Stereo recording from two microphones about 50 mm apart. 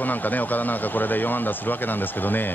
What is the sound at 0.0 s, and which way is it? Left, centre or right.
Speech, left.